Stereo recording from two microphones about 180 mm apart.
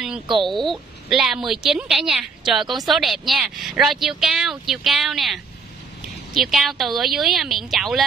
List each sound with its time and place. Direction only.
0.4 s a woman's voice: centre (ahead or behind)